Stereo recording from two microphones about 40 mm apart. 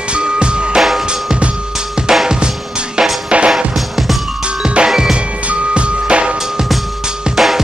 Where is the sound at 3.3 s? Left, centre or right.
Right.